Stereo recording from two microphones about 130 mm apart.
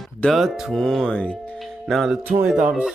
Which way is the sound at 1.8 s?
Centre (ahead or behind).